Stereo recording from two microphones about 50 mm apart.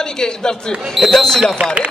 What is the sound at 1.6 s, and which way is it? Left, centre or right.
Speech, right.